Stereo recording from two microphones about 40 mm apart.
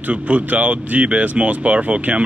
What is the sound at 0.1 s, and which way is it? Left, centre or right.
Speech, right.